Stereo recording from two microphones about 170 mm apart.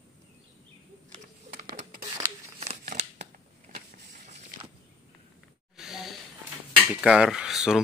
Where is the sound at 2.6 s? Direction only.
40° right (ahead or behind).